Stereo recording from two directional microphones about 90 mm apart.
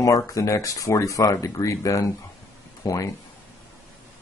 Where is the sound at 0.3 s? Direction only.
40° left (ahead or behind).